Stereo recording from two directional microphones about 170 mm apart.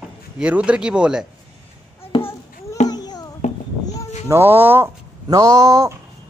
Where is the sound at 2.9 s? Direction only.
20° left (ahead or behind).